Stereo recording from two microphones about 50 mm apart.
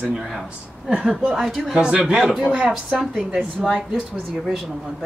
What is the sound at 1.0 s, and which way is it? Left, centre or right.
Speech, right.